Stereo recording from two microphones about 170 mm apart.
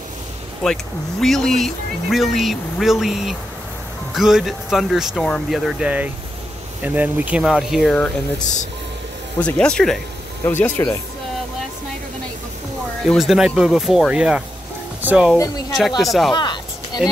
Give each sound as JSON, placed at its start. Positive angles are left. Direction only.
{"t": 0.6, "sound": "speech", "side_deg": 5}
{"t": 9.4, "sound": "speech", "side_deg": 5}
{"t": 13.0, "sound": "speech", "side_deg": 0}
{"t": 15.3, "sound": "speech", "side_deg": 20}
{"t": 16.0, "sound": "speech", "side_deg": 0}
{"t": 16.3, "sound": "a sound", "side_deg": 25}